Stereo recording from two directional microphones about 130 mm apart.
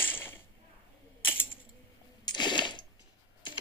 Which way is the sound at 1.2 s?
15° left (ahead or behind).